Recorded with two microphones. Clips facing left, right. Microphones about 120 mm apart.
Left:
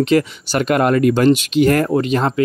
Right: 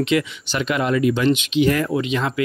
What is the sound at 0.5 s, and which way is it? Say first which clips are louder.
Speech: left 5 dB; 50° left (ahead or behind).